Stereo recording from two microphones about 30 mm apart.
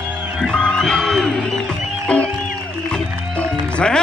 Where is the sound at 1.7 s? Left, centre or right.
Left.